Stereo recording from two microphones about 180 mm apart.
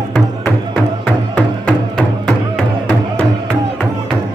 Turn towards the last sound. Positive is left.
turn(degrees=0)  # may be behind; listen again after turning